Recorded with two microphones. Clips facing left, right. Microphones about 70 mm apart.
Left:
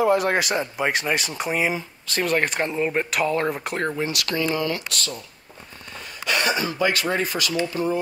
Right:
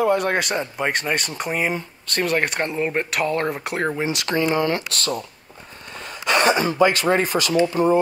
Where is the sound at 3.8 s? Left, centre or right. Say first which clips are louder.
Right 3 dB; centre.